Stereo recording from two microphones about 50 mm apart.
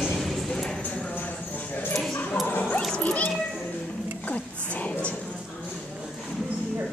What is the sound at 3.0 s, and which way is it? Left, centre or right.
Cat, left.